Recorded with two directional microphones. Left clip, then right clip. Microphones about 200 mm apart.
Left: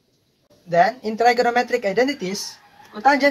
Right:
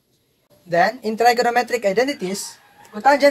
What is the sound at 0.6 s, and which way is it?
Speech, 25° right (ahead or behind).